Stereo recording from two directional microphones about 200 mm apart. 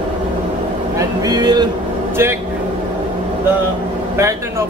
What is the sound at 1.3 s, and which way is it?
Vehicle, 20° right (ahead or behind).